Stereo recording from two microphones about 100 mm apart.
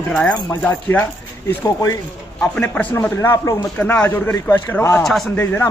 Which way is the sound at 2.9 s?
25° left (ahead or behind).